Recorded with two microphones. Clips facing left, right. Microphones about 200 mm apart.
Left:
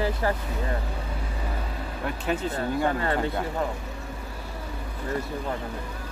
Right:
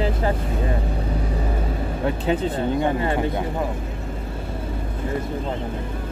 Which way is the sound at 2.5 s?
20° right (ahead or behind).